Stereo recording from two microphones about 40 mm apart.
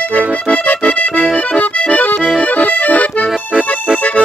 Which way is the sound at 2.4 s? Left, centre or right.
Left.